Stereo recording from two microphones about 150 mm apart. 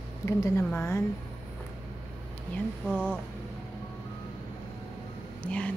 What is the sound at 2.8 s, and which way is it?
Speech, 5° right (ahead or behind).